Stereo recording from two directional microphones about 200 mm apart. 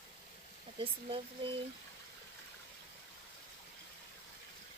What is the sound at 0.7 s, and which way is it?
Speech, 25° right (ahead or behind).